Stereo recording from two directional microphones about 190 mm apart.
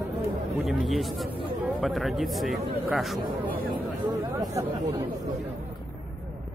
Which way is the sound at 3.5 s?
50° right (ahead or behind).